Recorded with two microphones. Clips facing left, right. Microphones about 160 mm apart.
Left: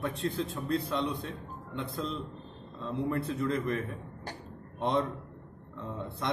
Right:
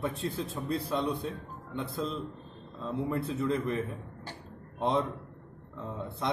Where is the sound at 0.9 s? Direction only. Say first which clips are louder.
Right 1 dB; 5° right (ahead or behind).